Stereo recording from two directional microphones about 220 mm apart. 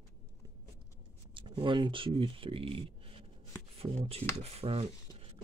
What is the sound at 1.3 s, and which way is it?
Speech, 20° right (ahead or behind).